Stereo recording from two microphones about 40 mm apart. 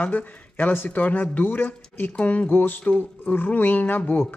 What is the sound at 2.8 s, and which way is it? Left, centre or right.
Speech, left.